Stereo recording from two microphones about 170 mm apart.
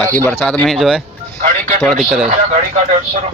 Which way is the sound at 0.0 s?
10° left (ahead or behind).